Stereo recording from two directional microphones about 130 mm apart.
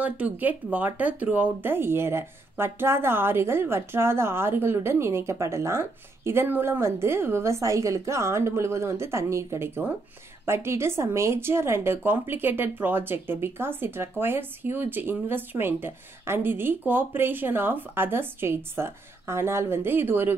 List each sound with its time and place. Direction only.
0.0 s speech: 10° right (ahead or behind)